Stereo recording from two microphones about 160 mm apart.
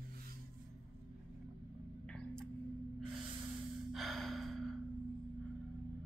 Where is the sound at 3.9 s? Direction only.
Centre (ahead or behind).